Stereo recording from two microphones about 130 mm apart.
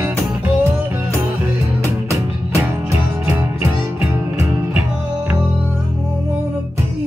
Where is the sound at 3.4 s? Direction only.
20° right (ahead or behind).